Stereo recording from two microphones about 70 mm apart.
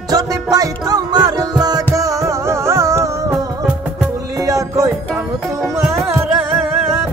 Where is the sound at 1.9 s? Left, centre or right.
Right.